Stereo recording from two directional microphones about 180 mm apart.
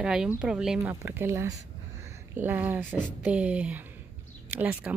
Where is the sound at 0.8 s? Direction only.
15° right (ahead or behind).